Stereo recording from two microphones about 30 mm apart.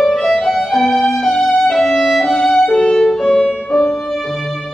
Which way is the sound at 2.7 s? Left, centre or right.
Left.